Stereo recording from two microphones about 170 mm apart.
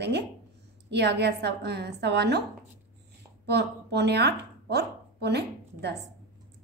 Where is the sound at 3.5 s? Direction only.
80° right.